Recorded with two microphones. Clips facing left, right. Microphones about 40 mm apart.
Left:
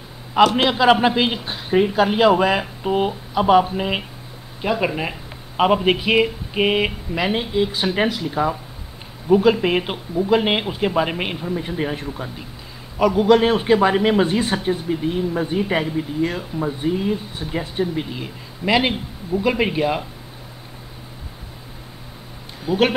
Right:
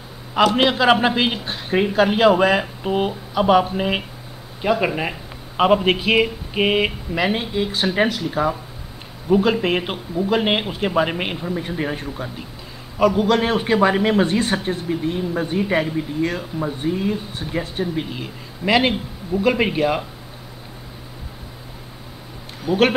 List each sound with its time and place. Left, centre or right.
0.6 s speech: centre
22.7 s speech: right